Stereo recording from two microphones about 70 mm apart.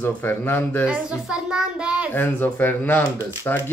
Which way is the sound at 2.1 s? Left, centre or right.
Left.